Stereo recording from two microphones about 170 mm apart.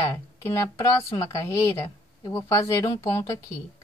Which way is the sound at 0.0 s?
20° left (ahead or behind).